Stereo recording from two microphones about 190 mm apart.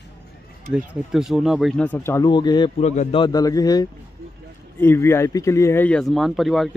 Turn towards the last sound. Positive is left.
turn(degrees=0)  # may be behind; listen again after turning